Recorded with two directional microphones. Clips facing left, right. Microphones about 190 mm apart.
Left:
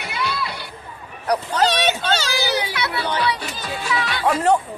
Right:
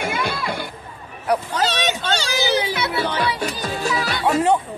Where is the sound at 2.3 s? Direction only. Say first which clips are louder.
Right 2 dB; 25° right (ahead or behind).